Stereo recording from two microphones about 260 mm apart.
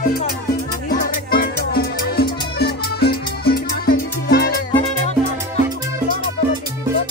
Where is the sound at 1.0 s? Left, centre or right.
Left.